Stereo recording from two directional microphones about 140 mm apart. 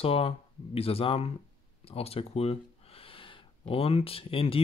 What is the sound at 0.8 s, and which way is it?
Speech, 45° left (ahead or behind).